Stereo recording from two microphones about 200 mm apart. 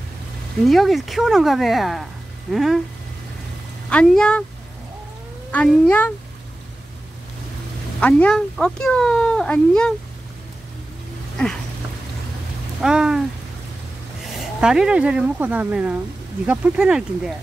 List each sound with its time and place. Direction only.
0.7 s speech: centre (ahead or behind)
3.9 s speech: 5° left (ahead or behind)
5.5 s speech: 5° left (ahead or behind)
8.0 s speech: 5° left (ahead or behind)
11.4 s speech: 5° left (ahead or behind)
12.8 s speech: 5° right (ahead or behind)
14.2 s speech: 5° right (ahead or behind)